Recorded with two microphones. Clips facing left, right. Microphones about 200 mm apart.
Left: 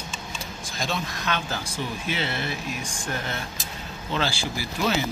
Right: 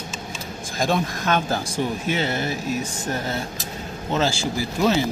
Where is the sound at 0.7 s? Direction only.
50° right (ahead or behind).